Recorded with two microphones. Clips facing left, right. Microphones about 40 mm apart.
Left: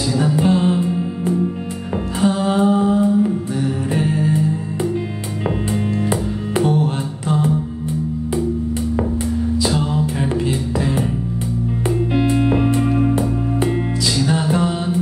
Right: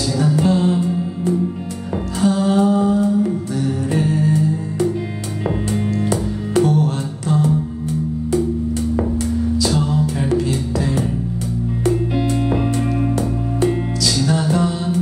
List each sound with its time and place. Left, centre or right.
0.2 s music: left
2.2 s mantra: left
3.6 s music: left
5.7 s music: left
9.6 s music: left
12.1 s music: centre